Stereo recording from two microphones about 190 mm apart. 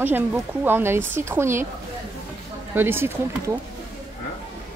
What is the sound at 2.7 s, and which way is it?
Speech, 10° right (ahead or behind).